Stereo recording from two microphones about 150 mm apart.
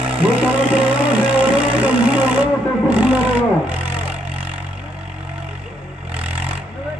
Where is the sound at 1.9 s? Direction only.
10° right (ahead or behind).